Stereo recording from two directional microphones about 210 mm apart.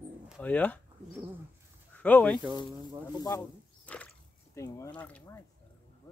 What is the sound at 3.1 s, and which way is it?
Speech, 20° left (ahead or behind).